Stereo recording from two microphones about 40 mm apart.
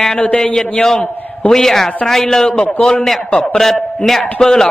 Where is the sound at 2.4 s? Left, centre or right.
Left.